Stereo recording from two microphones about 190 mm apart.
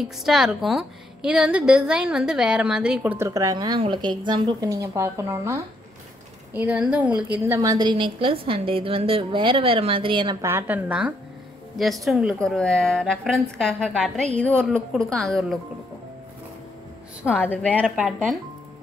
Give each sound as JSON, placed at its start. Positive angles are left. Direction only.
{"t": 0.2, "sound": "a woman's voice", "side_deg": 0}
{"t": 10.5, "sound": "a woman's voice", "side_deg": -5}
{"t": 17.2, "sound": "a woman's voice", "side_deg": 10}